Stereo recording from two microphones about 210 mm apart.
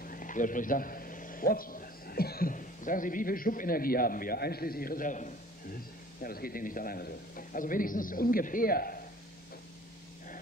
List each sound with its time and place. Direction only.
0.0 s a man's voice: 40° left (ahead or behind)